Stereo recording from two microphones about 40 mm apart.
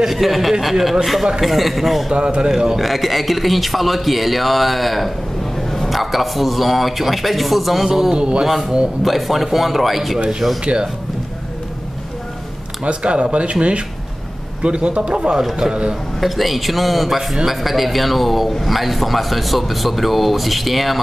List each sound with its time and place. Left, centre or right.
0.0 s speech: centre
2.1 s speech: right
2.8 s speech: centre
8.2 s speech: right
8.5 s speech: centre
10.6 s speech: right
12.8 s speech: right
15.3 s a man's voice: centre
15.7 s speech: right
16.2 s speech: centre